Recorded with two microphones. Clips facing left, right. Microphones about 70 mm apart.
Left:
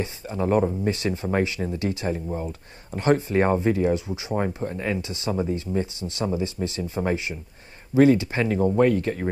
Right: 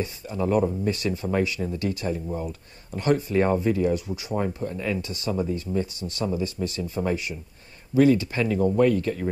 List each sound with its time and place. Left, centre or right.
0.0 s speech: left